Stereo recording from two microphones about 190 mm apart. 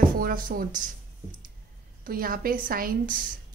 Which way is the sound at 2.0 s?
50° right (ahead or behind).